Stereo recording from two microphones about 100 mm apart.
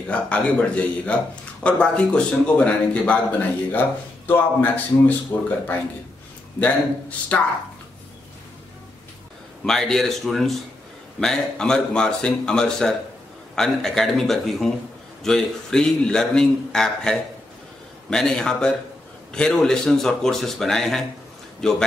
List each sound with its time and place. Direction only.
0.1 s a man's voice: 10° left (ahead or behind)
6.6 s a man's voice: 15° left (ahead or behind)
9.7 s a man's voice: 5° left (ahead or behind)